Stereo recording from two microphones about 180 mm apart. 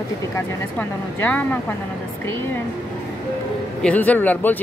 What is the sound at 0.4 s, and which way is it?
Speech, 10° left (ahead or behind).